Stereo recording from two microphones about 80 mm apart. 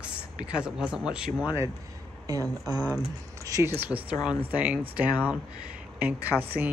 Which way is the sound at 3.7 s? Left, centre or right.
Right.